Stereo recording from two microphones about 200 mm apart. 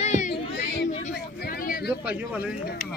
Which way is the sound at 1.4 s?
45° left (ahead or behind).